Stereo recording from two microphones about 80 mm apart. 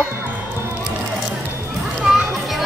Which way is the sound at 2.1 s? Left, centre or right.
Centre.